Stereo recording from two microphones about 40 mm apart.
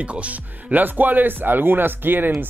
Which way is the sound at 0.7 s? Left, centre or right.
Right.